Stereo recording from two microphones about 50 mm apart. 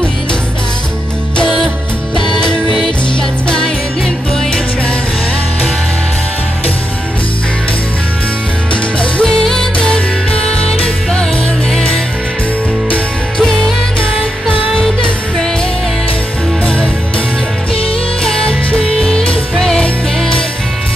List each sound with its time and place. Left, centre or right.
2.1 s music: centre
9.2 s music: centre
9.8 s music: centre
13.4 s music: centre
16.6 s music: left
18.2 s music: centre